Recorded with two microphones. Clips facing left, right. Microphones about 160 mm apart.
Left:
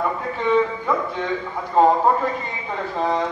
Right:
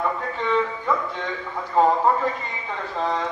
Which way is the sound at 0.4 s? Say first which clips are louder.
Left 5 dB; 15° left (ahead or behind).